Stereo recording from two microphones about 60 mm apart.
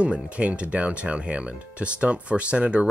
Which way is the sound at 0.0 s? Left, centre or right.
Right.